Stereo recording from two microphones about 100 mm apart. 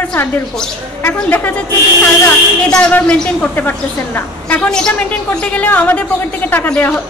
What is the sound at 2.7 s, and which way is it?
A woman's voice, 15° left (ahead or behind).